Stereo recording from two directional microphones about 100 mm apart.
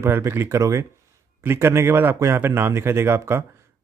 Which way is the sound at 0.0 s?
25° right (ahead or behind).